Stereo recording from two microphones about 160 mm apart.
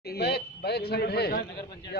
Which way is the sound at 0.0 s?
80° left.